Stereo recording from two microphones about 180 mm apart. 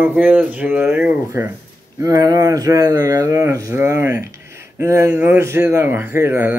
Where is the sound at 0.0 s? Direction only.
10° right (ahead or behind).